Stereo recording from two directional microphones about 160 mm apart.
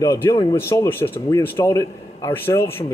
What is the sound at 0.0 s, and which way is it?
A man's voice, 20° left (ahead or behind).